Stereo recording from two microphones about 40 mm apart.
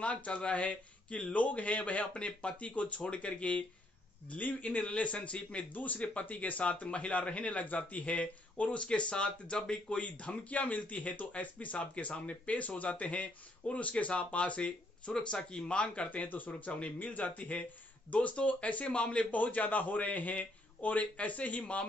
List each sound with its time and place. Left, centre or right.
0.0 s speech: left
4.3 s speech: left
5.7 s speech: left
9.9 s speech: left
15.7 s speech: left
19.3 s a man's voice: left